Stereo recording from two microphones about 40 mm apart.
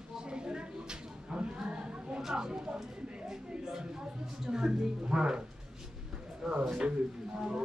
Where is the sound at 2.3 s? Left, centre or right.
Right.